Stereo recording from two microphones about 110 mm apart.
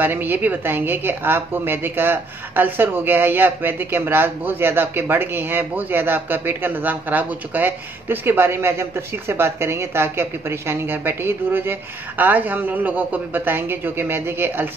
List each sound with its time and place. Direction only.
0.0 s a woman's voice: 20° right (ahead or behind)